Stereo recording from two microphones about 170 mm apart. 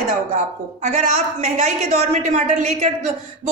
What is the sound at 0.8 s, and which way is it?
A woman's voice, 45° right (ahead or behind).